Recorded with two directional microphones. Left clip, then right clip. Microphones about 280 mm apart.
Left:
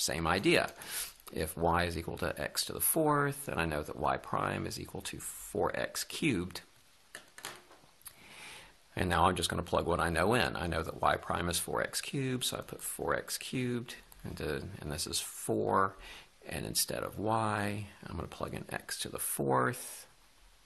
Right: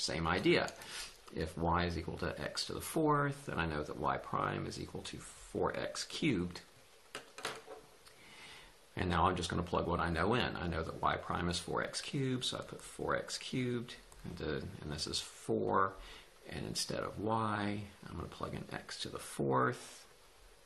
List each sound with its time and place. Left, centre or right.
0.0 s speech: left
8.9 s speech: left